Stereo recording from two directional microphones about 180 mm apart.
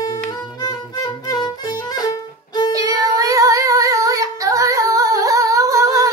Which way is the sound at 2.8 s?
20° right (ahead or behind).